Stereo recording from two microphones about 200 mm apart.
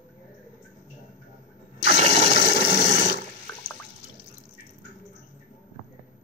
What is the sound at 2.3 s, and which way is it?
Toilet flush, 55° left (ahead or behind).